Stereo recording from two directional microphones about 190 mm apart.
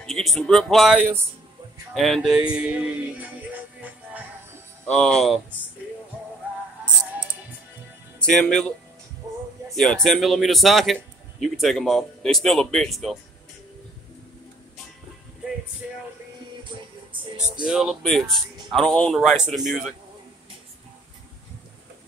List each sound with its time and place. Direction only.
0.0 s speech: centre (ahead or behind)
4.8 s speech: 5° left (ahead or behind)
8.3 s speech: centre (ahead or behind)
17.6 s speech: 5° right (ahead or behind)